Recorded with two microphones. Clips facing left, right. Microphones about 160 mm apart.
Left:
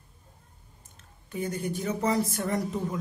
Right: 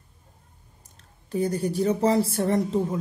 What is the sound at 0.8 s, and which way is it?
Speech, 35° right (ahead or behind).